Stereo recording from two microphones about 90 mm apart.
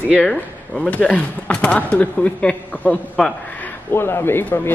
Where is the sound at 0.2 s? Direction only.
10° left (ahead or behind).